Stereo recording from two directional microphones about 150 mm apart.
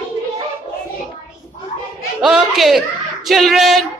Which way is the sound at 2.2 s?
Centre (ahead or behind).